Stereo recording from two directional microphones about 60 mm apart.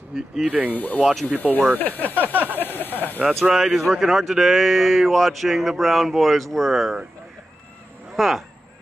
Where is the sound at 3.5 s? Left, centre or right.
Centre.